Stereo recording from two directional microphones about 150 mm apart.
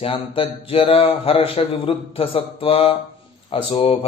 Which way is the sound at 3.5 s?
45° left (ahead or behind).